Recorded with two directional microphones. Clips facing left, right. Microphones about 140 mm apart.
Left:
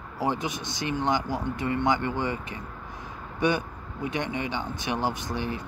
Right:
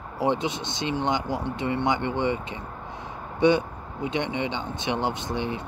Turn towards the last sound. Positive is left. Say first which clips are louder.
# right 2 dB
turn(degrees=-20)  # may be behind; listen again after turning